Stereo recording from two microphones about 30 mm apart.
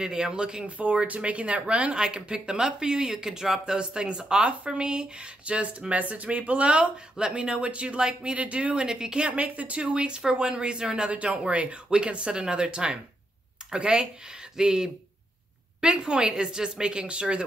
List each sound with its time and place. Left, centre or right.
0.0 s speech: right
0.7 s speech: right
2.0 s speech: right; by 3.6 s centre
3.6 s speech: right
7.2 s speech: right
8.8 s speech: right
9.7 s speech: right